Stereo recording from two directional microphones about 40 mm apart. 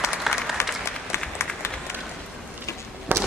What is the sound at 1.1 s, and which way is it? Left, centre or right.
Applause, left.